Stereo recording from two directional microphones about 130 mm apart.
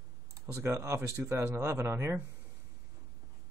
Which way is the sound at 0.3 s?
20° right (ahead or behind).